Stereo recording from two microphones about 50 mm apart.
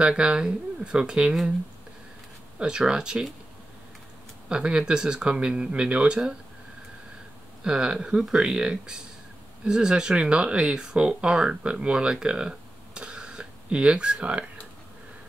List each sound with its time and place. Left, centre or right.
0.0 s speech: centre
2.6 s speech: centre
4.5 s speech: centre
7.6 s speech: centre